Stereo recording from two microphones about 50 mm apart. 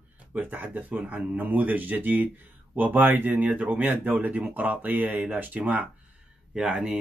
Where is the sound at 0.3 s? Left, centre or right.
Right.